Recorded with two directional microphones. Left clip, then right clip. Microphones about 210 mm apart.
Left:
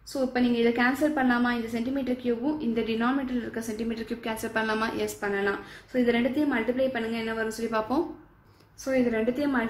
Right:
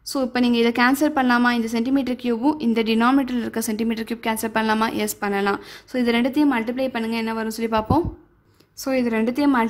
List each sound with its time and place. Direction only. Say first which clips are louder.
0.1 s a woman's voice: right 5 dB; 55° right (ahead or behind)